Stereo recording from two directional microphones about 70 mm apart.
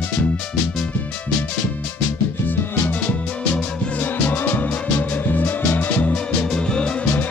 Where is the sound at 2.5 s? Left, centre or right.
Left.